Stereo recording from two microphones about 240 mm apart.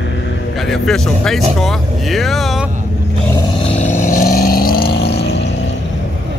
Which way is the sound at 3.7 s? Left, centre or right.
Left.